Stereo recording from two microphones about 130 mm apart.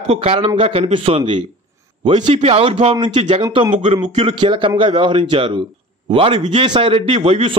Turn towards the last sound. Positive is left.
turn(degrees=-45)  # may be behind; listen again after turning